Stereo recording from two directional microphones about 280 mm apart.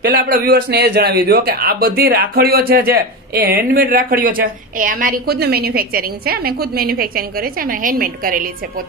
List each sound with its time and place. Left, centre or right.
0.0 s a man's voice: right